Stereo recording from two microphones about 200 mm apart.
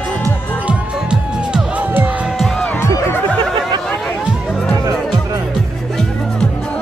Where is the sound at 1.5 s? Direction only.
5° right (ahead or behind).